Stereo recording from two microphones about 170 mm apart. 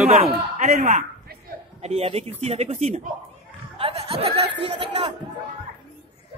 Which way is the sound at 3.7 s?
35° right (ahead or behind).